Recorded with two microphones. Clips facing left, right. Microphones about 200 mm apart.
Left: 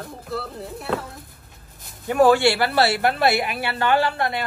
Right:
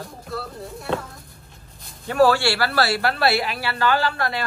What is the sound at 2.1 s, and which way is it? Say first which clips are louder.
A woman's voice: left 2 dB; 20° left (ahead or behind).